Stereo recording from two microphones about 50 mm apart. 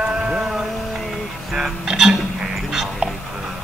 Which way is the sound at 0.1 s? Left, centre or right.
Centre.